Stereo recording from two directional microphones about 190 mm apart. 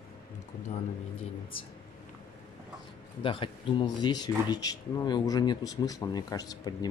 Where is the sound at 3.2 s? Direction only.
25° left (ahead or behind).